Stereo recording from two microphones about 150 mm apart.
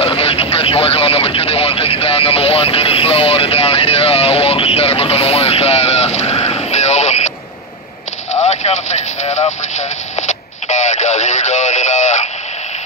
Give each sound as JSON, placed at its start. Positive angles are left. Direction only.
{"t": 0.0, "sound": "speech", "side_deg": 40}
{"t": 8.5, "sound": "speech", "side_deg": 50}
{"t": 9.8, "sound": "radio", "side_deg": 50}